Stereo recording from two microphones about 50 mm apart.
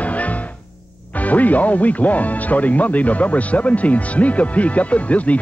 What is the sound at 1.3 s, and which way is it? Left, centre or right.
Speech, left.